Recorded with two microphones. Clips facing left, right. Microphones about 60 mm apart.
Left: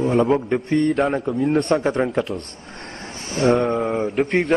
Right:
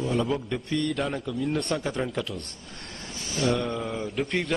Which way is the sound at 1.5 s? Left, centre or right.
Left.